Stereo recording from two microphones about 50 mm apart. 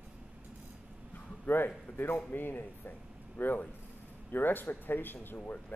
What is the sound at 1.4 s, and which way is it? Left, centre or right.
A man's voice, left.